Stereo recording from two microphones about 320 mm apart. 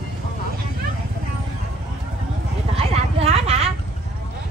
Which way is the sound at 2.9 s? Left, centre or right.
Centre.